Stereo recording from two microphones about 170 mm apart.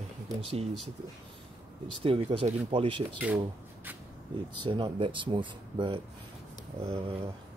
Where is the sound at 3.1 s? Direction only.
10° right (ahead or behind).